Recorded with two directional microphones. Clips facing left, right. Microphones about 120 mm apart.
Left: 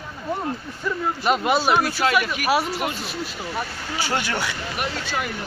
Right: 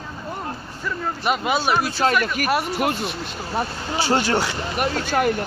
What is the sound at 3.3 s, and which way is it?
Speech, 35° right (ahead or behind).